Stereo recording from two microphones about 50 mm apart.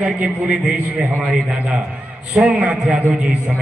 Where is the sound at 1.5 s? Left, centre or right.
Right; by 3.0 s centre.